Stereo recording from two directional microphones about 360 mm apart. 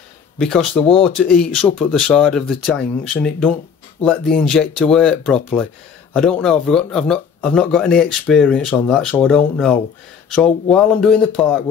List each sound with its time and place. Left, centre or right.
0.4 s speech: centre